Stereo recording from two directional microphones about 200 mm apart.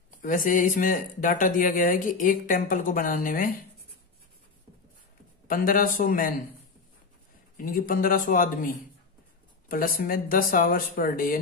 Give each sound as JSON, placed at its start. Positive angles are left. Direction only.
{"t": 0.2, "sound": "speech", "side_deg": 40}
{"t": 5.5, "sound": "speech", "side_deg": 45}
{"t": 7.5, "sound": "speech", "side_deg": 45}